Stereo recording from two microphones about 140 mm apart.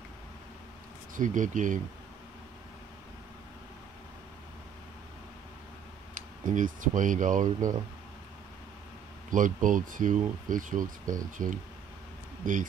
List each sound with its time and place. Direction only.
1.1 s speech: 65° right (ahead or behind)
6.1 s speech: 70° right (ahead or behind)
9.3 s speech: 70° right (ahead or behind)